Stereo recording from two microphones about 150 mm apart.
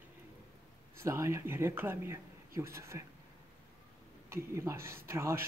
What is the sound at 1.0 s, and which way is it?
A man's voice, 20° right (ahead or behind).